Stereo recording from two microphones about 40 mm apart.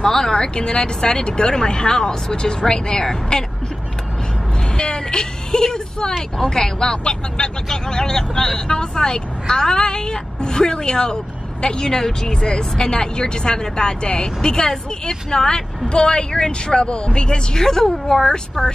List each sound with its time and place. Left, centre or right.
0.0 s speech: centre
4.7 s speech: centre